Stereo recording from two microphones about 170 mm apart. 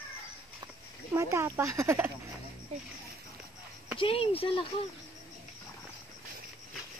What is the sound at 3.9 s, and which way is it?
Speech, 35° left (ahead or behind).